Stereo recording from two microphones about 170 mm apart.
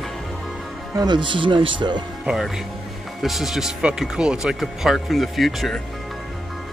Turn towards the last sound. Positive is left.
turn(degrees=0)  # may be behind; listen again after turning